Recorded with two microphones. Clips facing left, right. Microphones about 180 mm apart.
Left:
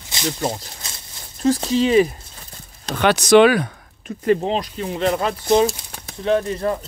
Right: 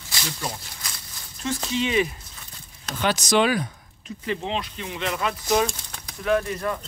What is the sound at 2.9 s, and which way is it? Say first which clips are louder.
Speech: left 9 dB; 65° left (ahead or behind).